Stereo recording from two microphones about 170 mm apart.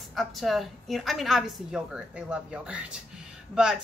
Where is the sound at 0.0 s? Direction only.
Centre (ahead or behind).